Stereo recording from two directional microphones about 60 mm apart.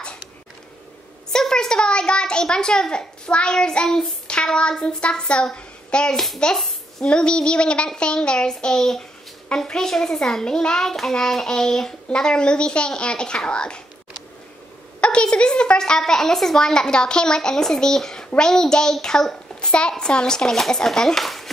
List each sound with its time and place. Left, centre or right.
1.3 s a child's voice: centre
6.1 s a child's voice: centre
6.4 s hands: centre
7.1 s a child's voice: centre
15.0 s a child's voice: centre